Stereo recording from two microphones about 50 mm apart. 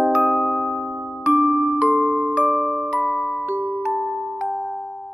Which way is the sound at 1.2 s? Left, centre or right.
Centre.